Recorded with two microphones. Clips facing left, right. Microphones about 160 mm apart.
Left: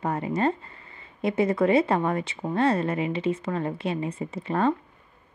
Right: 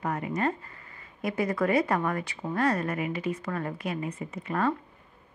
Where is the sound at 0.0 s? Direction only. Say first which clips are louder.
Left 4 dB; 30° left (ahead or behind).